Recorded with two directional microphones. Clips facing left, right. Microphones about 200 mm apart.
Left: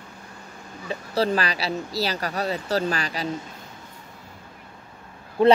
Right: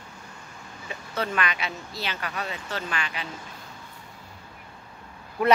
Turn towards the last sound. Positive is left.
turn(degrees=30)  # may be behind; listen again after turning